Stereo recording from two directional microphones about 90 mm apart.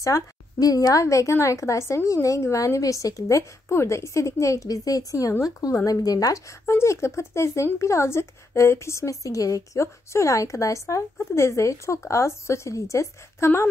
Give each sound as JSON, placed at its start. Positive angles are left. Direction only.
{"t": 0.0, "sound": "a woman's voice", "side_deg": 40}
{"t": 6.6, "sound": "speech", "side_deg": 30}